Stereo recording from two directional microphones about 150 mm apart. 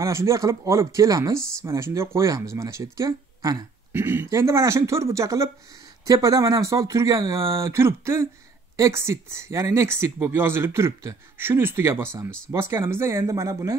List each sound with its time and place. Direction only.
0.0 s speech: 20° right (ahead or behind)